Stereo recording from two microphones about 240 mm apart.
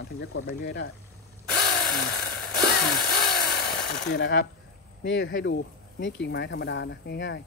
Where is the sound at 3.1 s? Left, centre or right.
Left.